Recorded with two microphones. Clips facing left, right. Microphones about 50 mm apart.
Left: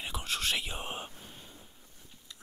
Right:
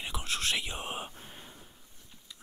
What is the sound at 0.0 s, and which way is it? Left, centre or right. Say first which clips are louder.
Whispering: even; centre.